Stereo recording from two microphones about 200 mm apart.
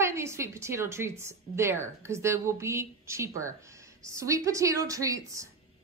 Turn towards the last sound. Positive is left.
turn(degrees=-15)  # may be behind; listen again after turning